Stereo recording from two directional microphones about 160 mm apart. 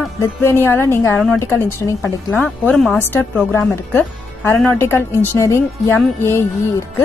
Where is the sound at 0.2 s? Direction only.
15° left (ahead or behind).